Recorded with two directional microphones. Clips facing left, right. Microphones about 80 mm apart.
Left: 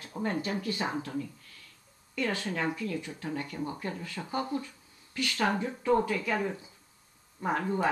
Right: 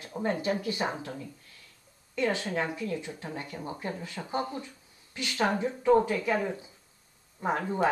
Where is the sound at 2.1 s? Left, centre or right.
Right.